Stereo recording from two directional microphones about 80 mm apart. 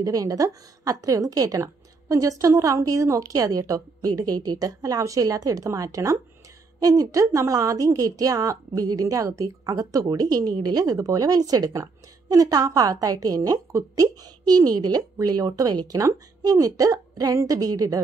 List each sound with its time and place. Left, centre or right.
0.0 s a woman's voice: right
16.0 s a woman's voice: right